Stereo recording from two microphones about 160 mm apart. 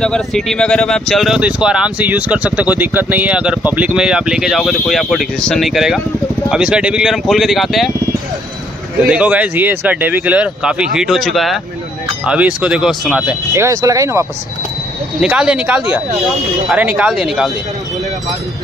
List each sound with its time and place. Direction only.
0.0 s speech: 5° left (ahead or behind)
9.0 s speech: 10° right (ahead or behind)
13.5 s speech: 15° right (ahead or behind)
15.1 s speech: 5° right (ahead or behind)